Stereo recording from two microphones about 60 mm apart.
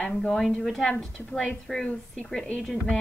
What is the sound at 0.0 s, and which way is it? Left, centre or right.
A woman's voice, centre.